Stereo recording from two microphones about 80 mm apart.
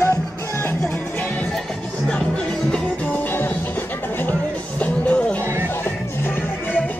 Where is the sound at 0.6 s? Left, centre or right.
Left.